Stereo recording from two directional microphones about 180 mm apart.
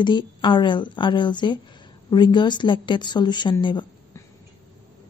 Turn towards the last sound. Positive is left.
turn(degrees=25)  # may be behind; listen again after turning